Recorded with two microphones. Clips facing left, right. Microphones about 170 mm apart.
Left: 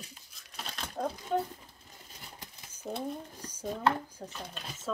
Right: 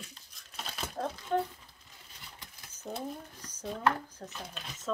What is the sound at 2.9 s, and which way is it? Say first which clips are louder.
Speech: left 2 dB; centre (ahead or behind).